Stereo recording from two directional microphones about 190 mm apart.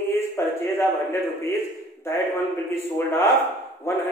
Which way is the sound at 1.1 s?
10° left (ahead or behind).